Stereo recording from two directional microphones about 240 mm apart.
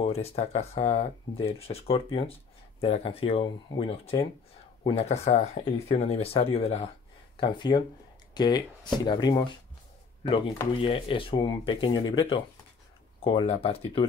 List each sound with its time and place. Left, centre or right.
0.0 s speech: left